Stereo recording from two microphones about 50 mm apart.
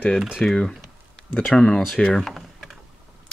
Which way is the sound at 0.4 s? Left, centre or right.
Left.